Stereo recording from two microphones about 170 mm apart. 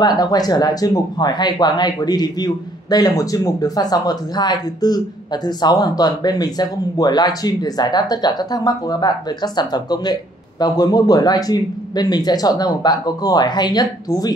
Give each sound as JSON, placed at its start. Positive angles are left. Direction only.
{"t": 0.0, "sound": "speech", "side_deg": 25}